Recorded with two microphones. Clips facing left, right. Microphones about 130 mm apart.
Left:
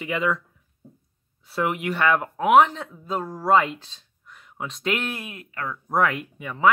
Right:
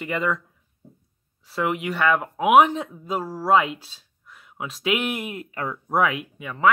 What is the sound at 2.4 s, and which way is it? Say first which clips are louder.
Speech: right 1 dB; 15° right (ahead or behind).